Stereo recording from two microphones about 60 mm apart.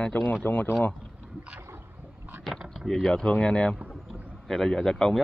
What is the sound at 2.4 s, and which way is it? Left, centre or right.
Speech, centre.